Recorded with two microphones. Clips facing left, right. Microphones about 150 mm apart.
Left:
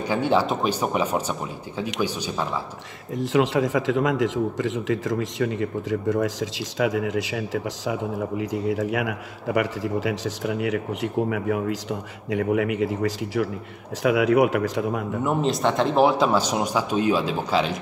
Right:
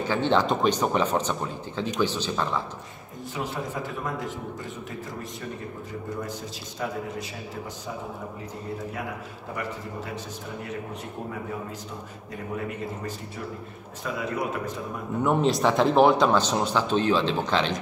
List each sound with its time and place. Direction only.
0.0 s a man's voice: 10° left (ahead or behind)
3.2 s a man's voice: 90° left
14.0 s speech: 75° left (ahead or behind)
15.2 s a man's voice: centre (ahead or behind)